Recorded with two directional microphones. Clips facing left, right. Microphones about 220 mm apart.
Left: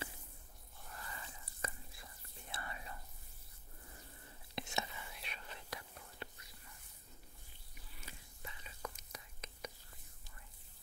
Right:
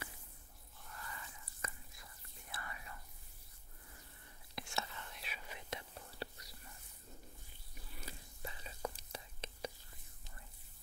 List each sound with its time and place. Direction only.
0.9 s whispering: 30° left (ahead or behind)
4.6 s whispering: 20° left (ahead or behind)
5.0 s whispering: centre (ahead or behind)
5.5 s whispering: 20° right (ahead or behind)
8.0 s whispering: 35° right (ahead or behind)